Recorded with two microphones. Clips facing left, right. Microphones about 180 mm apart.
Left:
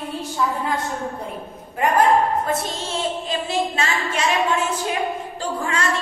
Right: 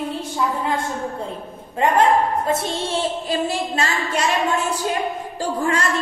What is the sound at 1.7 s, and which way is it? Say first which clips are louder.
A woman's voice: right 1 dB; 25° right (ahead or behind).